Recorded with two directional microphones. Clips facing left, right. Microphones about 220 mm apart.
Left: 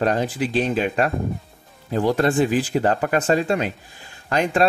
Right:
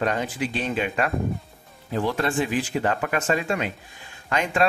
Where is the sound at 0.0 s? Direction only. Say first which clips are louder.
Left 4 dB; 35° left (ahead or behind).